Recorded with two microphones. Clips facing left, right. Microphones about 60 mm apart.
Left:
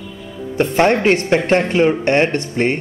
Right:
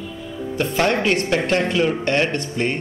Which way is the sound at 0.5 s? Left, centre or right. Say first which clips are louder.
Left 5 dB; left.